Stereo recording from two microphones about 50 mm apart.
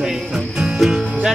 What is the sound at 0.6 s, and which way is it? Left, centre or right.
Music, centre.